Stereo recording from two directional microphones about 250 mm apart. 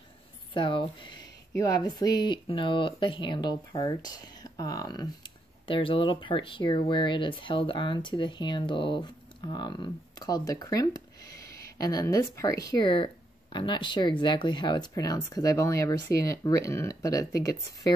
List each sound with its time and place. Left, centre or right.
0.6 s speech: centre